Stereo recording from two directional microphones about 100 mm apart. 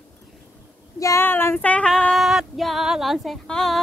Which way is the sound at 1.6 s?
15° left (ahead or behind).